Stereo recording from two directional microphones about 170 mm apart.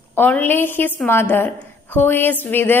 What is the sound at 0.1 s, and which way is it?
A woman's voice, 10° left (ahead or behind).